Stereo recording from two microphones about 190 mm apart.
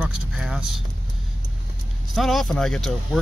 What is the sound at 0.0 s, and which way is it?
Vehicle, 5° right (ahead or behind).